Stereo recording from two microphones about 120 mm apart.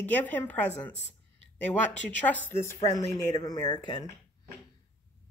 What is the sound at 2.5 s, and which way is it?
Speech, 20° left (ahead or behind).